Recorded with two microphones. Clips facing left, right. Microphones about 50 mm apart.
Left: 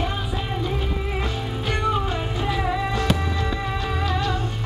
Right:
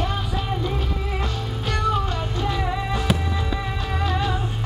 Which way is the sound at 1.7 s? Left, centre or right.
Centre.